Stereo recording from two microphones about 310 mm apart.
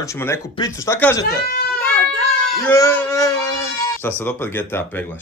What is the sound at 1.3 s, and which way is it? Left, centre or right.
Speech, left.